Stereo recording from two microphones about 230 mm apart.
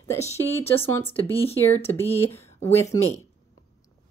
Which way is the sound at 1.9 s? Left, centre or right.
Centre.